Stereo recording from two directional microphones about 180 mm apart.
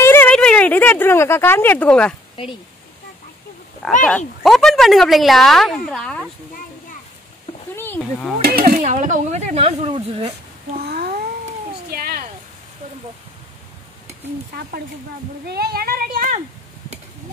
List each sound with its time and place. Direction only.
0.0 s speech: 10° left (ahead or behind)
3.8 s speech: centre (ahead or behind)
7.7 s a sound: 10° left (ahead or behind)
8.4 s speech: 60° right (ahead or behind)
8.8 s speech: 45° right (ahead or behind)
10.8 s a sound: 60° right (ahead or behind)
15.4 s speech: 60° right (ahead or behind)